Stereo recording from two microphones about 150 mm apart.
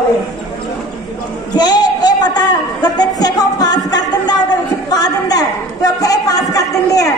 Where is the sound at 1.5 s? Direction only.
30° left (ahead or behind).